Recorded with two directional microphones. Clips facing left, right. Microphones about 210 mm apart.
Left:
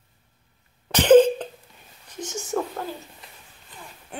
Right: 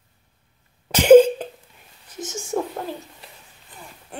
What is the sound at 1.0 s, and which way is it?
Cough, 10° right (ahead or behind).